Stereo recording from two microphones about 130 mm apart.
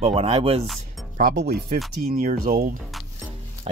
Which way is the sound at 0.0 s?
50° right (ahead or behind).